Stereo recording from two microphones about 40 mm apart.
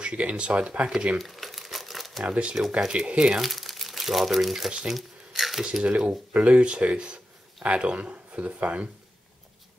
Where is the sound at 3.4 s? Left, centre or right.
Centre.